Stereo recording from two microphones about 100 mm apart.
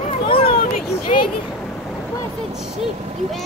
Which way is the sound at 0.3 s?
65° left (ahead or behind).